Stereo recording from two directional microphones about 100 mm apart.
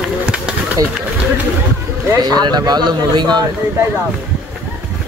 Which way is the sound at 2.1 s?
40° right (ahead or behind).